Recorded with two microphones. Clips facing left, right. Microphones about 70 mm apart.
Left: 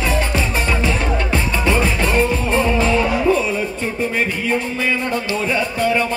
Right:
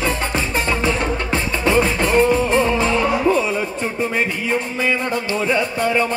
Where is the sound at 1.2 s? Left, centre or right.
Centre.